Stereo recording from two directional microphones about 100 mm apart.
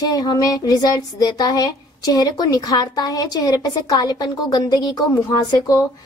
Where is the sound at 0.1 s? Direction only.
40° left (ahead or behind).